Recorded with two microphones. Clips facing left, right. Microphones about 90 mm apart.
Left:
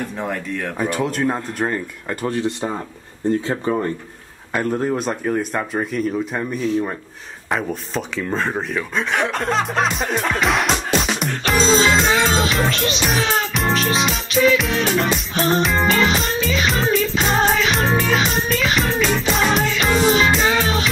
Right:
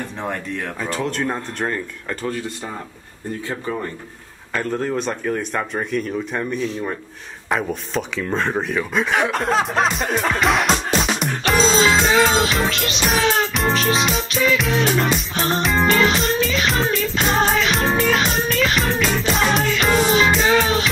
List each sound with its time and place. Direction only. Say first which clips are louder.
0.7 s speech: left 4 dB; 15° left (ahead or behind)
2.2 s speech: left 6 dB; 20° left (ahead or behind)
4.6 s speech: left 2 dB; 10° left (ahead or behind)
7.4 s a sound: right 1 dB; centre (ahead or behind)